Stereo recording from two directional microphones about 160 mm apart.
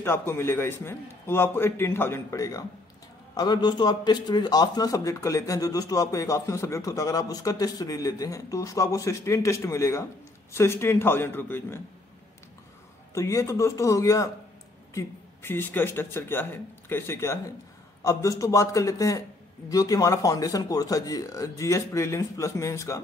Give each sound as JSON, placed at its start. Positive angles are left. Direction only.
{"t": 0.0, "sound": "a man's voice", "side_deg": 15}
{"t": 13.1, "sound": "a man's voice", "side_deg": 20}